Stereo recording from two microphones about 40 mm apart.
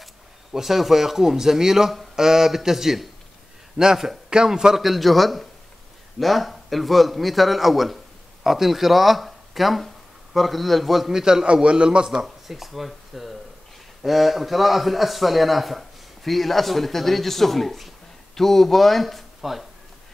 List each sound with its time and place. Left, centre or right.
0.0 s a man's voice: centre
11.4 s a man's voice: right
12.4 s a man's voice: centre